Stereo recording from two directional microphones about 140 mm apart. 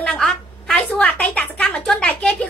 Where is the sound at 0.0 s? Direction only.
5° left (ahead or behind).